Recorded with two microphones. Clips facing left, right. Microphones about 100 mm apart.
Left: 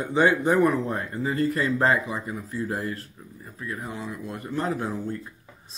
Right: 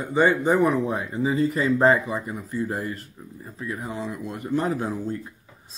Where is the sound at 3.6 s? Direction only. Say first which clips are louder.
Right 3 dB; 20° right (ahead or behind).